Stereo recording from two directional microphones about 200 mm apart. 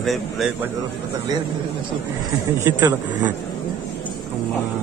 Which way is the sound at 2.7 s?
20° right (ahead or behind).